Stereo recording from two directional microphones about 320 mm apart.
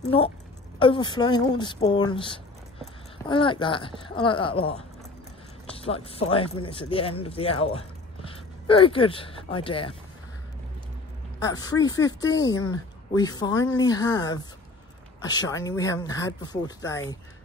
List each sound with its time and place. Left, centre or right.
0.0 s speech: centre
11.4 s speech: centre